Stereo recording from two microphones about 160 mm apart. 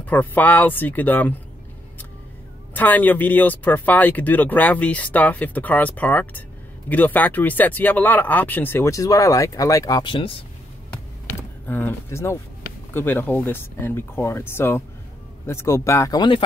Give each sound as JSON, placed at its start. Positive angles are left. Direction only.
{"t": 0.0, "sound": "speech", "side_deg": 10}
{"t": 2.7, "sound": "speech", "side_deg": 10}
{"t": 11.3, "sound": "speech", "side_deg": 10}